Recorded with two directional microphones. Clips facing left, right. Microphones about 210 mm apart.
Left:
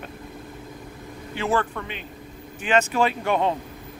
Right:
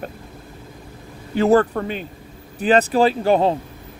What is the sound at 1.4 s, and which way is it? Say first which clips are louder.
Speech: right 10 dB; 40° right (ahead or behind).